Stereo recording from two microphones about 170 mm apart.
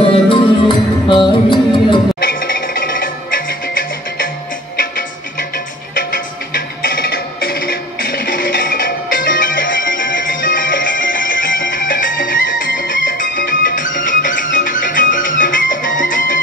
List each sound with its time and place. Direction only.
0.0 s music: 30° left (ahead or behind)
2.1 s music: 60° left (ahead or behind)
6.5 s music: 60° left (ahead or behind)